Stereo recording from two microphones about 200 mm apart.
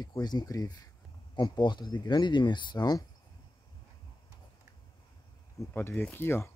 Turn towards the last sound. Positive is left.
turn(degrees=10)  # may be behind; listen again after turning